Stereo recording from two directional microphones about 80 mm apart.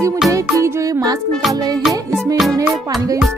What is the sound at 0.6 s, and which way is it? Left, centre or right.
Music, right.